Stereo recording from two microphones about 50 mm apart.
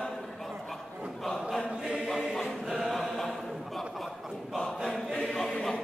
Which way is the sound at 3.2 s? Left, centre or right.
Centre.